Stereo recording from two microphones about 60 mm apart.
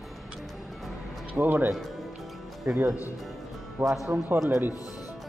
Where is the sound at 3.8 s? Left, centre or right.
Right.